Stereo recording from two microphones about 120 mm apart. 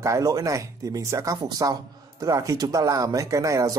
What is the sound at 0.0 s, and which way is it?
Speech, 30° right (ahead or behind).